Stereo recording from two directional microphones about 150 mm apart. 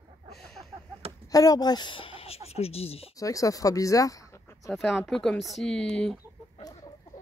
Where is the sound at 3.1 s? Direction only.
20° left (ahead or behind).